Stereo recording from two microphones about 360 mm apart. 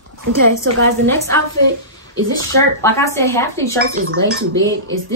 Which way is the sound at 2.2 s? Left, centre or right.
Right.